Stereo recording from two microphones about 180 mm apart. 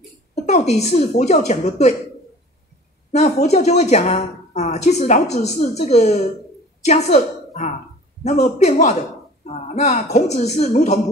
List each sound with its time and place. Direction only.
0.3 s a woman's voice: 40° left (ahead or behind)
3.1 s a woman's voice: 40° left (ahead or behind)